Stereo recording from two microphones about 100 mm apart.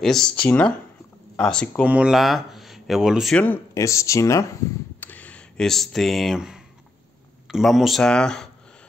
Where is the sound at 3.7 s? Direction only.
30° left (ahead or behind).